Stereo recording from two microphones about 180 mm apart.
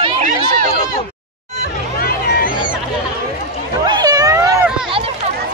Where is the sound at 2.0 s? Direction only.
55° left (ahead or behind).